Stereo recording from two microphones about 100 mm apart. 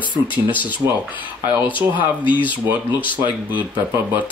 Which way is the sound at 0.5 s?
15° right (ahead or behind).